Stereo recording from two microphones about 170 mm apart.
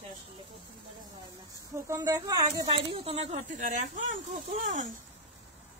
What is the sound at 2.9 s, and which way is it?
Speech, 35° right (ahead or behind).